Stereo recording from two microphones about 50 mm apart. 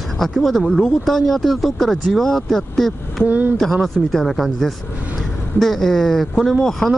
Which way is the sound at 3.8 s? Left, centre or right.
Centre.